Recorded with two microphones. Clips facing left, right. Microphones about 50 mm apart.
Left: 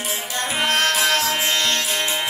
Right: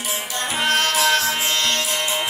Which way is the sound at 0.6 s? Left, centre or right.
Left.